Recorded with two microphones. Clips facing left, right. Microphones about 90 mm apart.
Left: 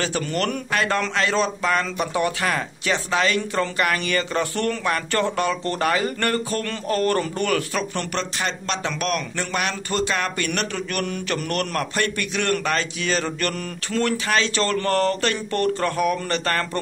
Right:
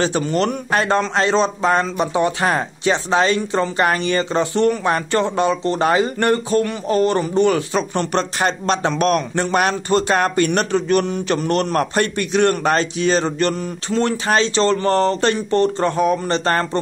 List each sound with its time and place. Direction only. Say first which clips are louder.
0.0 s a man's voice: right 6 dB; 25° right (ahead or behind)